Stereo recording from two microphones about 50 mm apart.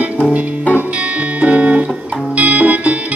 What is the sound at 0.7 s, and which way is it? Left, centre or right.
Music, right.